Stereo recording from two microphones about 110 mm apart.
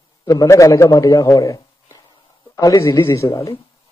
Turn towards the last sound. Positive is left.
turn(degrees=30)  # may be behind; listen again after turning